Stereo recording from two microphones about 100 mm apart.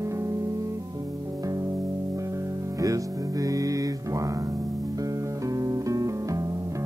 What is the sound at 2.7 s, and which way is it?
Music, 35° right (ahead or behind).